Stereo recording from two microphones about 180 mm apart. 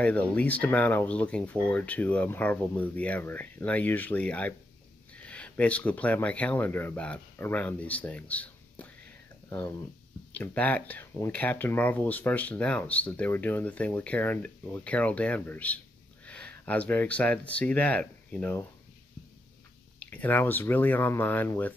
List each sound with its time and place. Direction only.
0.0 s speech: 5° left (ahead or behind)
10.3 s speech: 10° left (ahead or behind)
20.0 s speech: 10° left (ahead or behind)